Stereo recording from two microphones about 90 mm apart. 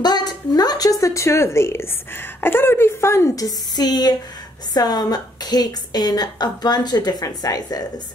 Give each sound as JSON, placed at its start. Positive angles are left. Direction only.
{"t": 0.0, "sound": "a woman's voice", "side_deg": 50}
{"t": 3.4, "sound": "a woman's voice", "side_deg": 45}